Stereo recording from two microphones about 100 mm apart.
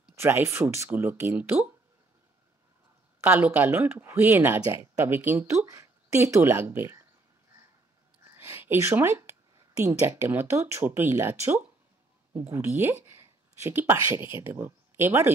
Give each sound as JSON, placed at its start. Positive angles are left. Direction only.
{"t": 0.1, "sound": "speech", "side_deg": -25}
{"t": 3.2, "sound": "speech", "side_deg": -15}
{"t": 8.2, "sound": "a sound", "side_deg": -25}
{"t": 9.8, "sound": "speech", "side_deg": -25}